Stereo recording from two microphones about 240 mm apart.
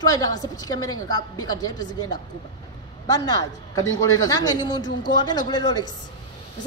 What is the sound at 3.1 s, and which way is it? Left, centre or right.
Speech, centre.